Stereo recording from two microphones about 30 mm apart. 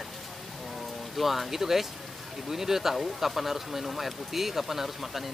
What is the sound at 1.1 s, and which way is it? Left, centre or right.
Speech, centre.